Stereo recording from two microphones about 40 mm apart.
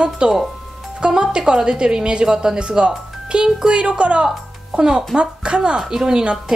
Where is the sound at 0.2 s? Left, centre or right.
Right.